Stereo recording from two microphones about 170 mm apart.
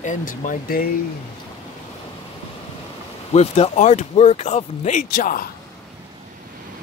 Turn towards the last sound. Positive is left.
turn(degrees=60)  # may be behind; listen again after turning